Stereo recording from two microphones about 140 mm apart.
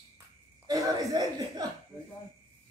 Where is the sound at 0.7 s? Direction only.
25° right (ahead or behind).